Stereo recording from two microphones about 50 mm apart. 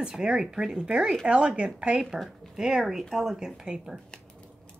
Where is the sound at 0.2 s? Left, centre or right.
Centre.